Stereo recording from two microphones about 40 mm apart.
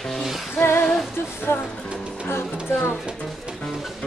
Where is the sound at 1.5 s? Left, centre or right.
Left.